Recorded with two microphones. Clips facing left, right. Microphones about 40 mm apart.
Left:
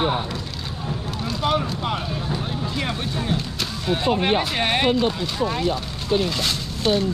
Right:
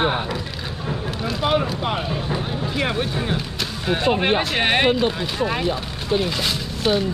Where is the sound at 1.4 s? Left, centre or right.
Centre.